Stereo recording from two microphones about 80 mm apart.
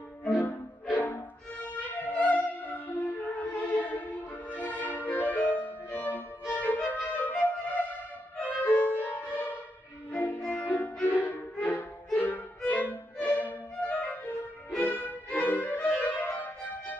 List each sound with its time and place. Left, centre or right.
0.9 s music: left
6.5 s flute: left
8.6 s music: left
12.2 s violin: left
14.8 s music: left